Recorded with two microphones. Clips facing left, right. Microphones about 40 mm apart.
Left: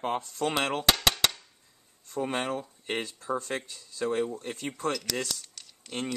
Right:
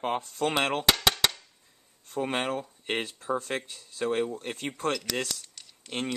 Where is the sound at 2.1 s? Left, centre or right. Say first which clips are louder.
Right 1 dB; right.